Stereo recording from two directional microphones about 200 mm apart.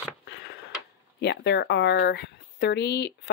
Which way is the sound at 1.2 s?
60° left (ahead or behind).